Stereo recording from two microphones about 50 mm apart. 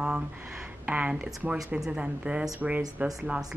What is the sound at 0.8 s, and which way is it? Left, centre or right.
A woman's voice, right.